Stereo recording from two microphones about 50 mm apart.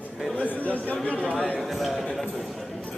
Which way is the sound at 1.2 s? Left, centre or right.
Centre.